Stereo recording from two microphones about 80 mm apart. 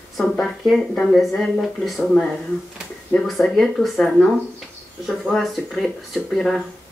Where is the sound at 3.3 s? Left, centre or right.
Centre.